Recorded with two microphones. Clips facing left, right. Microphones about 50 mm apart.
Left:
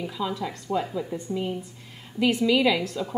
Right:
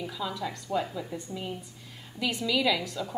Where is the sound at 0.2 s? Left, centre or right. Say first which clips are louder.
Left 5 dB; centre.